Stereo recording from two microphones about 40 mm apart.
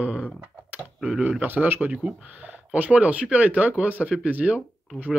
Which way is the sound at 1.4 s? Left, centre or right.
Right.